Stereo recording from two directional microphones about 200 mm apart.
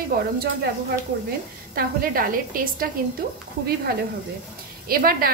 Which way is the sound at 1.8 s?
45° right (ahead or behind).